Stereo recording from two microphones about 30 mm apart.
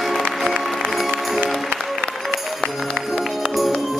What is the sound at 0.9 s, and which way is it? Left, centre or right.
Music, centre.